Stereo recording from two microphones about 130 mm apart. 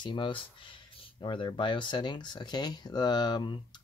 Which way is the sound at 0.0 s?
40° left (ahead or behind).